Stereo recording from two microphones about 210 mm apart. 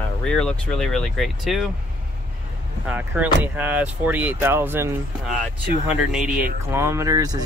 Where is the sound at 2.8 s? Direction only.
10° right (ahead or behind).